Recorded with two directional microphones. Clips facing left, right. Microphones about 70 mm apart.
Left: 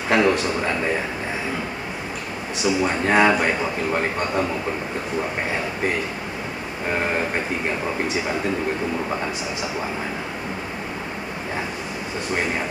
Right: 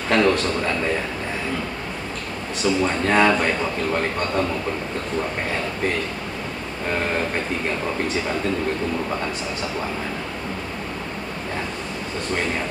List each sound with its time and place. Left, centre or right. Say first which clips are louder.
0.1 s speech: even; centre
2.6 s speech: even; centre
12.3 s speech: even; centre